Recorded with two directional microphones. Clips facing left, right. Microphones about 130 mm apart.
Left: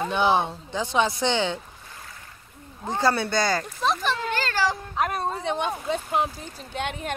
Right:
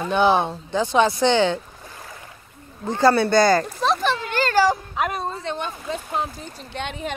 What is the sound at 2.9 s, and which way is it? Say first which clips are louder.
Speech: right 6 dB; 10° left (ahead or behind).